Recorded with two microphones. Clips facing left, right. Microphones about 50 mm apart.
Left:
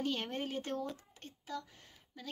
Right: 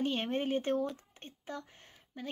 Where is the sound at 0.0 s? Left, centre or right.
Right.